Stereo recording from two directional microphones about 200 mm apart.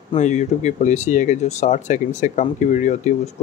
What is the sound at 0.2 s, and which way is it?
Speech, 35° left (ahead or behind).